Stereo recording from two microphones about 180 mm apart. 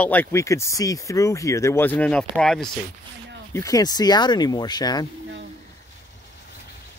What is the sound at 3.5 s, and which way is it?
Speech, 20° left (ahead or behind).